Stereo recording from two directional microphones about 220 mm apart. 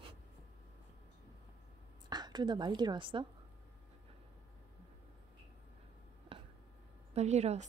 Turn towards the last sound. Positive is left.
turn(degrees=-30)  # may be behind; listen again after turning